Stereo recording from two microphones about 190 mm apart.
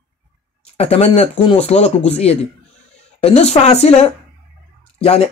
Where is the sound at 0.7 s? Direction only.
30° left (ahead or behind).